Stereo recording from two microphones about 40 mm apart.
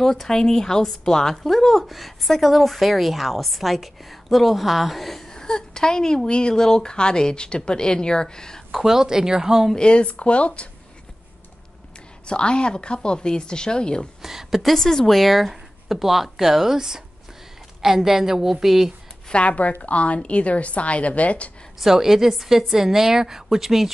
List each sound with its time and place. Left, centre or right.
0.0 s a woman's voice: centre
5.3 s speech: centre
8.8 s a woman's voice: centre
9.8 s speech: left
12.3 s speech: left
14.2 s a woman's voice: centre
14.6 s a woman's voice: centre
19.3 s a woman's voice: left
21.7 s a woman's voice: centre